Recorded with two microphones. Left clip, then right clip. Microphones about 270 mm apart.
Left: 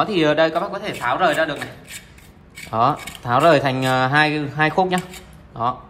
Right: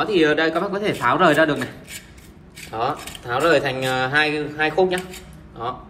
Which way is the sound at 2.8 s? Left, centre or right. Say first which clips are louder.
Left 5 dB; left.